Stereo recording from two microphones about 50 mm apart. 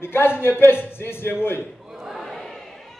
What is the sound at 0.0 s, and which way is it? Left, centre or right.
Speech, left.